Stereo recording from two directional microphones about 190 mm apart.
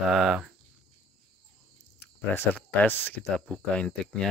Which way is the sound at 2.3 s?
10° left (ahead or behind).